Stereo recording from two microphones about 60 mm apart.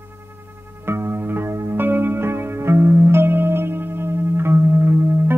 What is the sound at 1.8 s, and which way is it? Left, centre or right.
Music, right.